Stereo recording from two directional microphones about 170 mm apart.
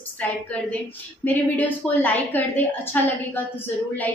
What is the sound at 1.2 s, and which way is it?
A woman's voice, 10° left (ahead or behind).